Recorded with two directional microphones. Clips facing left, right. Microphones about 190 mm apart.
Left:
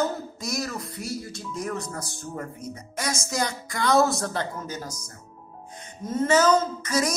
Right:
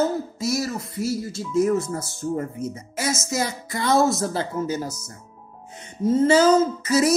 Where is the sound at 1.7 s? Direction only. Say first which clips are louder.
Right 9 dB; 25° right (ahead or behind).